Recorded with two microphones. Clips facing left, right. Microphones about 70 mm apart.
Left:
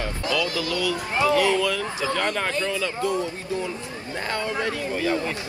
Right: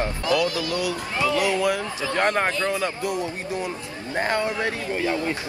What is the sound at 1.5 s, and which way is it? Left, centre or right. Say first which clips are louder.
A man's voice: right 1 dB; right.